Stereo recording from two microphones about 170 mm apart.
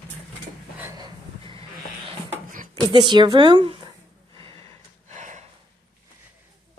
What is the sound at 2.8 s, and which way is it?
Speech, 30° right (ahead or behind).